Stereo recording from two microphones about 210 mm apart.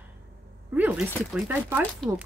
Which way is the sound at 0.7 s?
10° right (ahead or behind).